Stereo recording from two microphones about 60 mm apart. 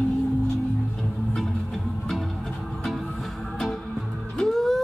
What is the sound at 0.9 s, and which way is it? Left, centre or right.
Music, centre.